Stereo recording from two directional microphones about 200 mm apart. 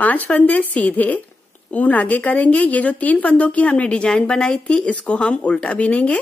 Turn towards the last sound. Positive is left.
turn(degrees=5)  # may be behind; listen again after turning